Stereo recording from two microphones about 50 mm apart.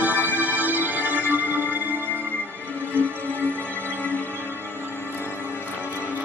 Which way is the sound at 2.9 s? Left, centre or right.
Left.